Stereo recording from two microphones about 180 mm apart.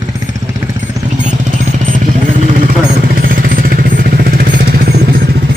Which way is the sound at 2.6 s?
50° right (ahead or behind).